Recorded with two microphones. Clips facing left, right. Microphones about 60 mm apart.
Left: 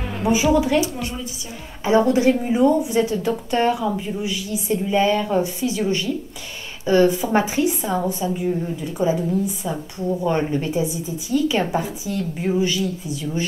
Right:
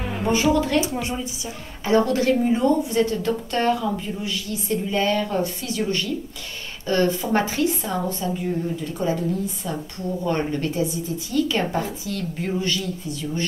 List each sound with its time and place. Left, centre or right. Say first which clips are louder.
0.2 s a woman's voice: left 2 dB; centre
1.9 s a woman's voice: left 3 dB; centre